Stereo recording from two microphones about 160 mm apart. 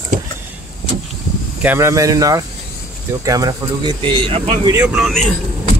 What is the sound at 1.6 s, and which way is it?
Speech, 15° right (ahead or behind).